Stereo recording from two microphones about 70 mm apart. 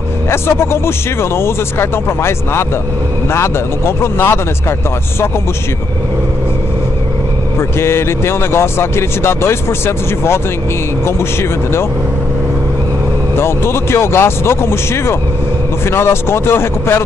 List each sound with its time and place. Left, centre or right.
0.3 s speech: left
7.8 s speech: left
13.4 s speech: left